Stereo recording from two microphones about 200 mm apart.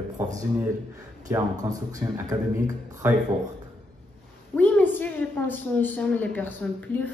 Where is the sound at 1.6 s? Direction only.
15° right (ahead or behind).